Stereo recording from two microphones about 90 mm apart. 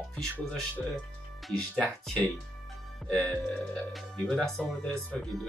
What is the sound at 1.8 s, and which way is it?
Speech, 15° left (ahead or behind).